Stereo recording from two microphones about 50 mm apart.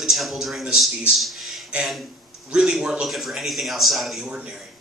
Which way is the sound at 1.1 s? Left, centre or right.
Centre.